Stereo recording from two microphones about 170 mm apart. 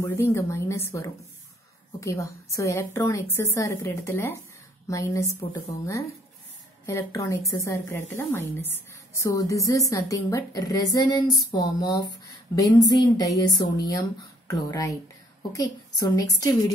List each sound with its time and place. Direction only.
0.0 s a woman's voice: 15° left (ahead or behind)